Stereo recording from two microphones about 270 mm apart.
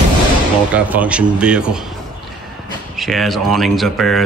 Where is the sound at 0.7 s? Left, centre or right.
Centre.